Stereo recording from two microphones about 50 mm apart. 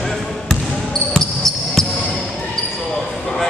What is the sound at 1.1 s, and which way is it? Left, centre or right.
Basketball bounce, centre.